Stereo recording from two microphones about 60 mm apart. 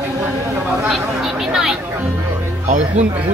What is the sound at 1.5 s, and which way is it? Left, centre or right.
Speech, centre.